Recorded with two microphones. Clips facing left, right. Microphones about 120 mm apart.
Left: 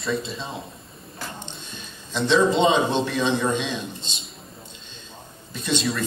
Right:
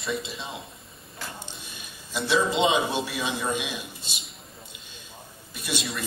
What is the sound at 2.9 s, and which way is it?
A man's voice, 10° right (ahead or behind).